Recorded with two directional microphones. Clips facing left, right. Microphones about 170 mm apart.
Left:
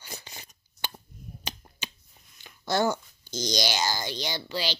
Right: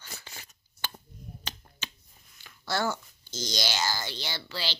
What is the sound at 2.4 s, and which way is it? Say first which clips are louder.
A woman's voice: left 4 dB; 20° left (ahead or behind).